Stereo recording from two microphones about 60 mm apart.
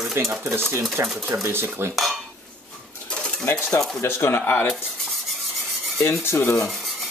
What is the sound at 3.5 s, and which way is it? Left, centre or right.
Speech, left.